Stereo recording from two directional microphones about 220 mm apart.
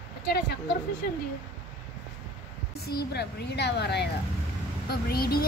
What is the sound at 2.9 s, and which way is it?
A woman's voice, 45° left (ahead or behind).